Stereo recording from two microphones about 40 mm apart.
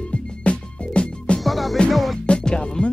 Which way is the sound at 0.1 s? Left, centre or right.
Left.